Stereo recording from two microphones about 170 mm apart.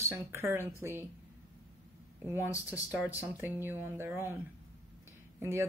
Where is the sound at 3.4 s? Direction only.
10° right (ahead or behind).